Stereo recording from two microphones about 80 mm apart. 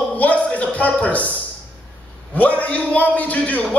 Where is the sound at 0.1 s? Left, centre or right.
Centre.